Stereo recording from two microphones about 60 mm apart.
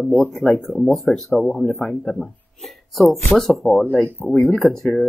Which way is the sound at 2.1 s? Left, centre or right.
Centre.